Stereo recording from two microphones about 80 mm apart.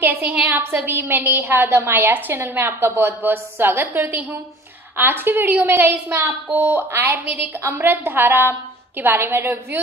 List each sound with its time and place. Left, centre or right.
0.0 s a woman's voice: right